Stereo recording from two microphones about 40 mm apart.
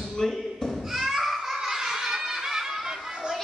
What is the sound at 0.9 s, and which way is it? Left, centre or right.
Children playing, centre.